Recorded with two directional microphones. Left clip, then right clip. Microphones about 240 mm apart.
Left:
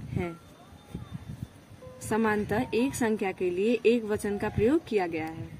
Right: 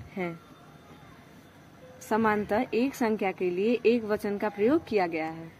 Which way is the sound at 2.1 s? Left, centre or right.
Centre.